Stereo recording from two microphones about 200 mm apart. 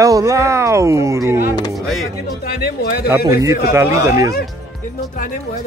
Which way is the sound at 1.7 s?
Centre (ahead or behind).